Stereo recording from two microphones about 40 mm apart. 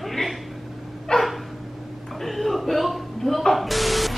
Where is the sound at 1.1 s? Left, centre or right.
Left.